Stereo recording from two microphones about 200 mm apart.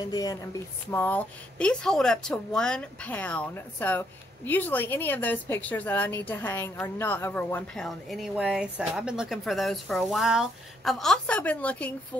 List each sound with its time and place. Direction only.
0.1 s speech: 20° left (ahead or behind)